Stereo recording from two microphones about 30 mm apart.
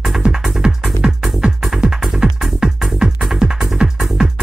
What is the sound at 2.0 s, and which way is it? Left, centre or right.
Music, centre.